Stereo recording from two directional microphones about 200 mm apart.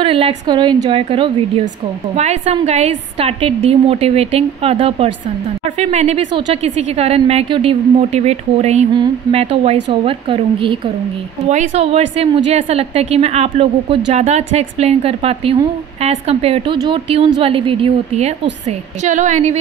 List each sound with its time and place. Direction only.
0.0 s a woman's voice: 30° right (ahead or behind)